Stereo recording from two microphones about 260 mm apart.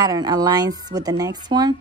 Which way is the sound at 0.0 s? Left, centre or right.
Centre.